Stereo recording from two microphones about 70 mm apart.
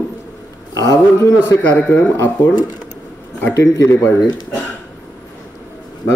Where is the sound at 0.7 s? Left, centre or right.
Left.